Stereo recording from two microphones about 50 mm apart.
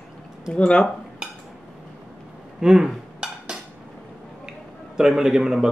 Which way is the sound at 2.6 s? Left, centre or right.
Centre.